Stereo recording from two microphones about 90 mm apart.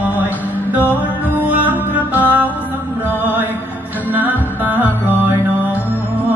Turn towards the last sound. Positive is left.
turn(degrees=-20)  # may be behind; listen again after turning